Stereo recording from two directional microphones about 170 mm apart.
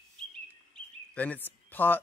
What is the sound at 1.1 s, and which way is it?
Speech, 10° left (ahead or behind).